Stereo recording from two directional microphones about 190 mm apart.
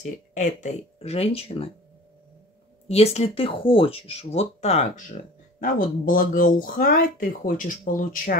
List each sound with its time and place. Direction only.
0.0 s speech: 40° left (ahead or behind)
2.9 s speech: 35° left (ahead or behind)